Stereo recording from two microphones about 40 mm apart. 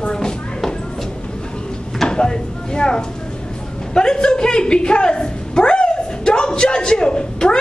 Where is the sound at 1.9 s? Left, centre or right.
Centre.